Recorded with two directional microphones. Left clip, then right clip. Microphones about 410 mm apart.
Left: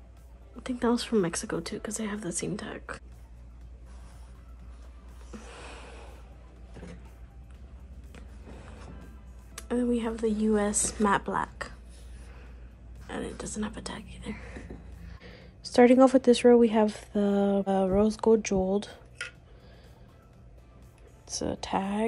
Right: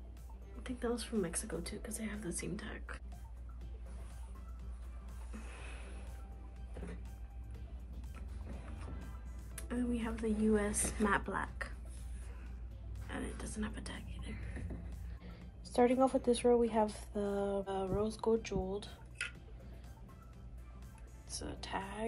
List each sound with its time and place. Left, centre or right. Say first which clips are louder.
0.7 s a woman's voice: left 11 dB; centre
9.6 s a woman's voice: left 11 dB; centre
13.1 s speech: left 8 dB; centre
15.2 s speech: left 13 dB; left
18.8 s dishes: left 9 dB; centre
21.3 s a woman's voice: left 12 dB; centre